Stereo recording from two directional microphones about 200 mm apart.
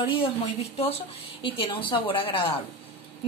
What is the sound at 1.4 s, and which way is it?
A woman's voice, 25° left (ahead or behind).